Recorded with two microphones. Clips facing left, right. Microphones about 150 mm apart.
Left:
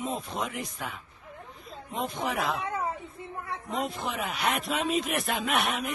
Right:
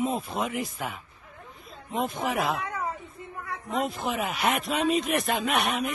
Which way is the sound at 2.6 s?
25° left (ahead or behind).